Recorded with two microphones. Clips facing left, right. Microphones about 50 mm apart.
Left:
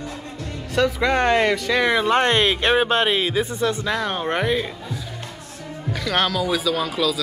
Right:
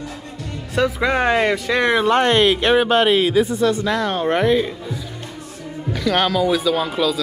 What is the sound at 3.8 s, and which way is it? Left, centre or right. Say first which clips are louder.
Speech: right 4 dB; centre.